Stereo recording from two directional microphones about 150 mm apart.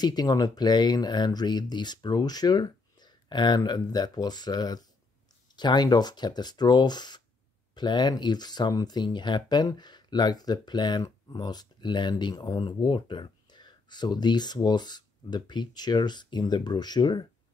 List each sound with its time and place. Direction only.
0.0 s speech: 25° left (ahead or behind)